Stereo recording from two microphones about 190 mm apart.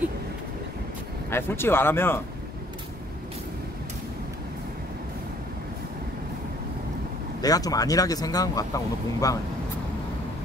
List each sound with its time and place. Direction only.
1.3 s speech: 10° left (ahead or behind)
7.4 s speech: 20° left (ahead or behind)